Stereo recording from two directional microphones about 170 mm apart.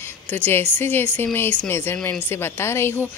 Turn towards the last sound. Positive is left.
turn(degrees=15)  # may be behind; listen again after turning